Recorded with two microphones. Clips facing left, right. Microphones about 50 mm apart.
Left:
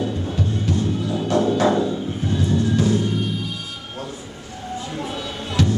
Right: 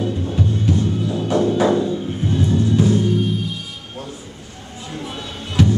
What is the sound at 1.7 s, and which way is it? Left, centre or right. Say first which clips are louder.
Music: right 1 dB; centre.